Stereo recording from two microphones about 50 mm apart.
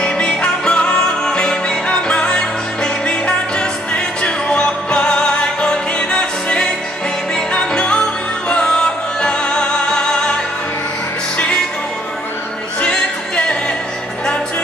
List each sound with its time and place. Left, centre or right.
0.0 s music: centre
11.3 s music: left